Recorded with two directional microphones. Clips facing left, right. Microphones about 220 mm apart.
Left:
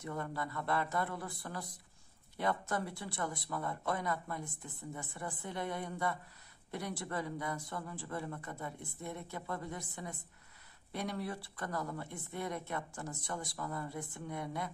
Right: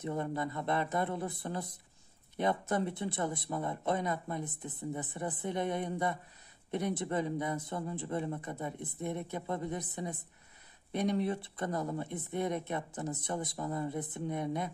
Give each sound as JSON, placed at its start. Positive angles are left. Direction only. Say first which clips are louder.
{"t": 0.0, "sound": "speech", "louder": "right 5 dB", "side_deg": -20}